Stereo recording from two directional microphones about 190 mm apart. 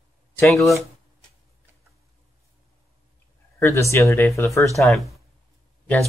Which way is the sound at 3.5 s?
15° left (ahead or behind).